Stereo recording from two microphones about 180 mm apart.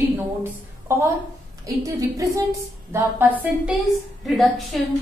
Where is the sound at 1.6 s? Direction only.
20° right (ahead or behind).